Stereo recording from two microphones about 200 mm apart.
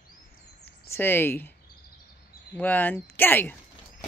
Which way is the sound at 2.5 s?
10° left (ahead or behind).